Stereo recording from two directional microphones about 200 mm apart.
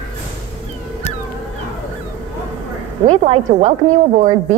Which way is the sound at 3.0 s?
30° right (ahead or behind).